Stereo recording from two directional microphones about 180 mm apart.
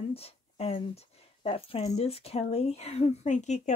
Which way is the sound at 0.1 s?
35° left (ahead or behind).